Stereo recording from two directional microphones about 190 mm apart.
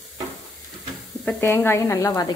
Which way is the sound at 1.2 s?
10° left (ahead or behind).